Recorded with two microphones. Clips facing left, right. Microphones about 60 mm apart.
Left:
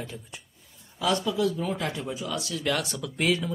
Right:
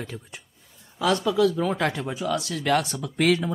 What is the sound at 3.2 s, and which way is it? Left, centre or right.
Speech, right.